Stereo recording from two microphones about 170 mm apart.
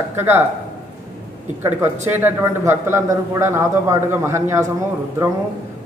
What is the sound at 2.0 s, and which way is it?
A man's voice, 15° right (ahead or behind).